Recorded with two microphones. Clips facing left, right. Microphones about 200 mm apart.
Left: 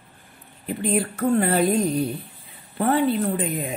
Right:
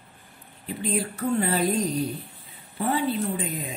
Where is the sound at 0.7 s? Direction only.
60° left (ahead or behind).